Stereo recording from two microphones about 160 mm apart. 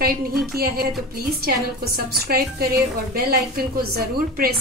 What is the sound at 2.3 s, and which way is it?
A woman's voice, 70° right (ahead or behind).